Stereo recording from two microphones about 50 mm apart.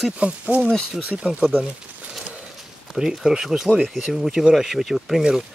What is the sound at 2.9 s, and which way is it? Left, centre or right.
Speech, centre.